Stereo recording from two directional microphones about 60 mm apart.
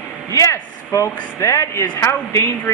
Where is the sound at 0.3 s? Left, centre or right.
Left.